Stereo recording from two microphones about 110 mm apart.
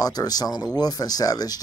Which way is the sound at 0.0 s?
35° left (ahead or behind).